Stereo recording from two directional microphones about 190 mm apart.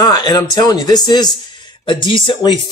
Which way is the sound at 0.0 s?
20° left (ahead or behind).